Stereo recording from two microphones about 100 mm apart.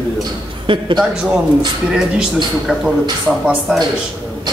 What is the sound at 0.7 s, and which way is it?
Speech, 55° right (ahead or behind).